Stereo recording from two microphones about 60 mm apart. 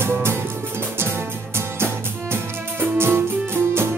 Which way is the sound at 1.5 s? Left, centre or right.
Right.